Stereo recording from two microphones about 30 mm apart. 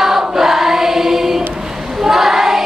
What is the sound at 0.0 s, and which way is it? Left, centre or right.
Choir, centre.